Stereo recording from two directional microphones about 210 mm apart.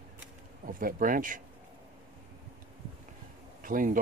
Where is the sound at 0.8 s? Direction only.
40° right (ahead or behind).